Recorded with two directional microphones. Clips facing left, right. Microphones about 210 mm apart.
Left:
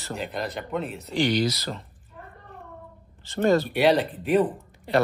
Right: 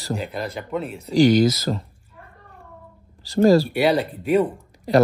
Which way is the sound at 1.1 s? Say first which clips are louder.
Right 8 dB; 45° right (ahead or behind).